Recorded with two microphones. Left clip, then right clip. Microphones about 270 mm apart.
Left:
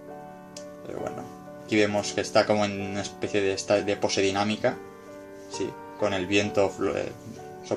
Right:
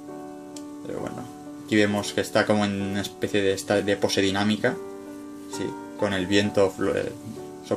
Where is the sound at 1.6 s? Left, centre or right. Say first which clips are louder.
Right 1 dB; right.